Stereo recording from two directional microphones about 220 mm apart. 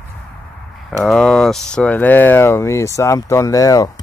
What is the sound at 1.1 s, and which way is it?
Speech, 5° left (ahead or behind).